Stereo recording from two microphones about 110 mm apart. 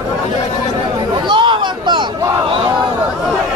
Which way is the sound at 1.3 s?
45° right (ahead or behind).